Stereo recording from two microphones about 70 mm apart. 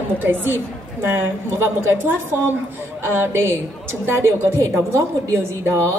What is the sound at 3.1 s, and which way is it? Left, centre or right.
A woman's voice, right.